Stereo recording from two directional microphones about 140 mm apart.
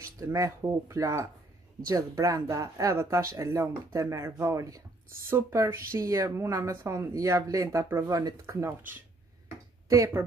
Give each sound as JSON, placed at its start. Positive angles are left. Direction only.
{"t": 0.0, "sound": "speech", "side_deg": -25}